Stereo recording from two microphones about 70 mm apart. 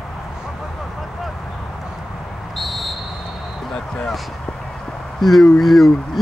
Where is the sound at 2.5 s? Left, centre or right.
Centre.